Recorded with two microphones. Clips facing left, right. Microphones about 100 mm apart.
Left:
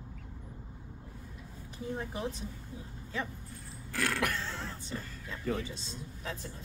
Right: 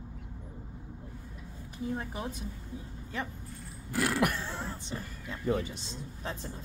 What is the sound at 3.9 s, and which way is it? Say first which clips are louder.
Speech: right 4 dB; 15° right (ahead or behind).